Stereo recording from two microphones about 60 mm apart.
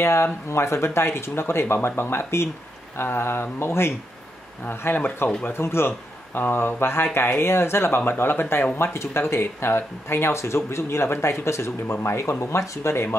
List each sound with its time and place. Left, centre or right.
0.0 s speech: left
4.6 s speech: left